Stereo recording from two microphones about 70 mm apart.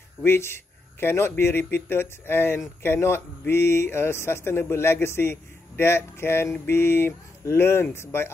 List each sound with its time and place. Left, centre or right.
0.2 s a man's voice: left